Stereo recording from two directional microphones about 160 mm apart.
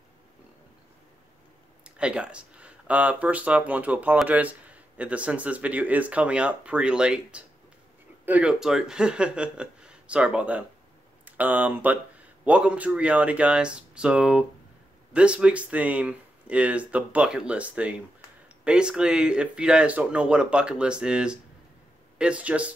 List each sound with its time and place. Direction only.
2.0 s speech: 5° right (ahead or behind)